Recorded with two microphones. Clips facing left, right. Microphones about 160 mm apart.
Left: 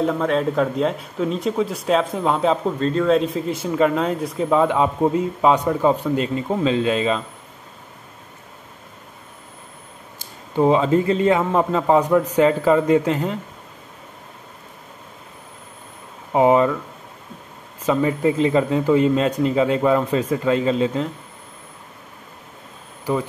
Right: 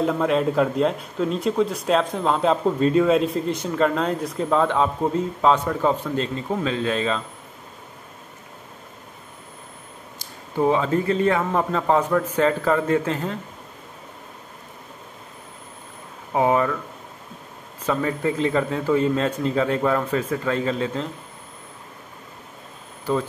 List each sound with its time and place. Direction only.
0.0 s a man's voice: centre (ahead or behind); by 7.2 s 15° left (ahead or behind)
10.6 s speech: 20° left (ahead or behind)
16.3 s speech: 20° left (ahead or behind)
17.8 s speech: 15° left (ahead or behind)